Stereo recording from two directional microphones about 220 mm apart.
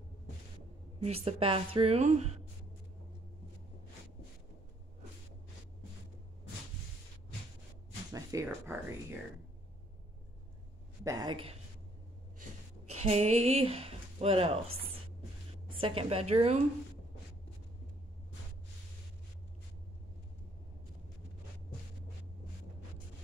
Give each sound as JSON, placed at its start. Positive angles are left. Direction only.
{"t": 0.9, "sound": "a woman's voice", "side_deg": -25}
{"t": 8.1, "sound": "a sound", "side_deg": -15}
{"t": 11.1, "sound": "a woman's voice", "side_deg": -20}
{"t": 12.9, "sound": "speech", "side_deg": -30}
{"t": 15.7, "sound": "a woman's voice", "side_deg": -25}